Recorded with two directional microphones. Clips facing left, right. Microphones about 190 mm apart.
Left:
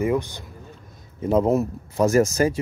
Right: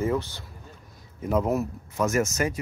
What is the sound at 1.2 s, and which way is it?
Speech, 30° left (ahead or behind).